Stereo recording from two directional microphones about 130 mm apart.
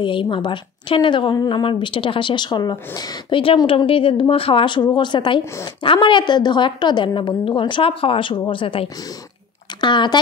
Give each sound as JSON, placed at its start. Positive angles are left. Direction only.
{"t": 0.0, "sound": "a woman's voice", "side_deg": 40}